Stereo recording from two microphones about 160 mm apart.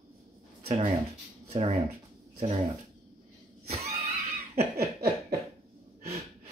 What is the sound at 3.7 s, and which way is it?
Neigh, 40° right (ahead or behind).